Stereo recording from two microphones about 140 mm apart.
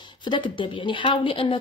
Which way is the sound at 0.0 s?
35° left (ahead or behind).